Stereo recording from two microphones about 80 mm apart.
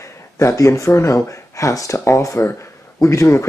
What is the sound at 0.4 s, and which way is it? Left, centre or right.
Speech, left.